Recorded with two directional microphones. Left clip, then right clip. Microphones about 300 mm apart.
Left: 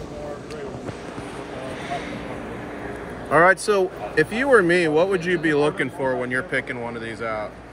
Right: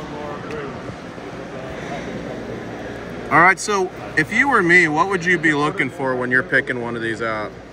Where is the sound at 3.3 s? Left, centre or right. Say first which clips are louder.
Right 2 dB; centre.